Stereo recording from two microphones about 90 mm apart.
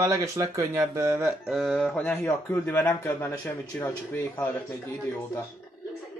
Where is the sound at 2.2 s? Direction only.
25° left (ahead or behind).